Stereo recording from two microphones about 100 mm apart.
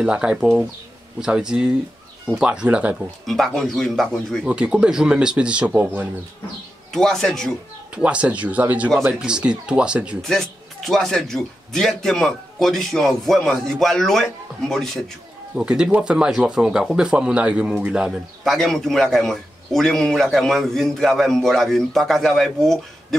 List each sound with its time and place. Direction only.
0.0 s speech: 10° right (ahead or behind)
3.3 s speech: 5° left (ahead or behind)
4.5 s speech: 10° right (ahead or behind)
6.9 s speech: 5° left (ahead or behind)
7.9 s speech: 10° right (ahead or behind)
10.2 s speech: 5° left (ahead or behind)
15.5 s speech: 10° right (ahead or behind)
18.4 s speech: centre (ahead or behind)